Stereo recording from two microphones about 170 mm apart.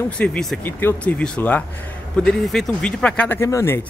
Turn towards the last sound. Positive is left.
turn(degrees=15)  # may be behind; listen again after turning